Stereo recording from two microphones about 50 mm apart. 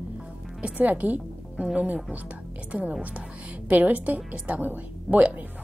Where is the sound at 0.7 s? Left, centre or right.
Right.